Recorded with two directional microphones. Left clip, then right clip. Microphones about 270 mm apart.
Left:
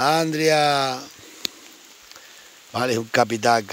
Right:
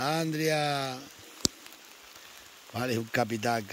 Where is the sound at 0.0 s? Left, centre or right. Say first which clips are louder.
Left 10 dB; centre.